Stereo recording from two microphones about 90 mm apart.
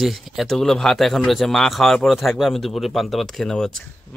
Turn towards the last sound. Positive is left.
turn(degrees=5)  # may be behind; listen again after turning